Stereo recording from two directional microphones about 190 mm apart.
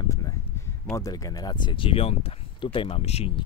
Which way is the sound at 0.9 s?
20° left (ahead or behind).